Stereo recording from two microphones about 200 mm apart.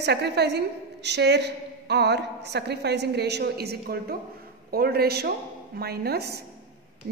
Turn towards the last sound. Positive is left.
turn(degrees=-55)  # may be behind; listen again after turning